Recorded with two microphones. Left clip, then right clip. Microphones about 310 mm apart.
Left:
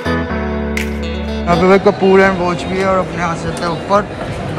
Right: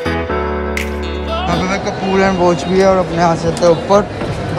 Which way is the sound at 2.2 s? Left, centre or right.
Centre.